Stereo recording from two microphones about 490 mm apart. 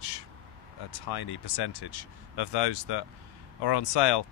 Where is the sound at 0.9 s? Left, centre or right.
Left.